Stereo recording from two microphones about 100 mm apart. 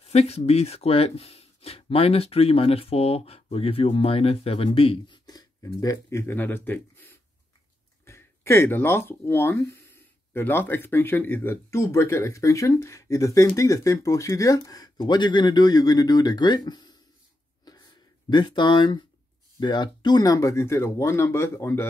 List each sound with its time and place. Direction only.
0.0 s speech: 90° left; by 4.9 s 70° left (ahead or behind)
5.0 s speech: 45° left (ahead or behind)
17.7 s a sound: 40° left (ahead or behind)
18.3 s speech: 50° left (ahead or behind); by 21.8 s 25° left (ahead or behind)